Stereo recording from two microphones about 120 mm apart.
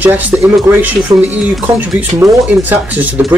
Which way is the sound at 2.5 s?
15° right (ahead or behind).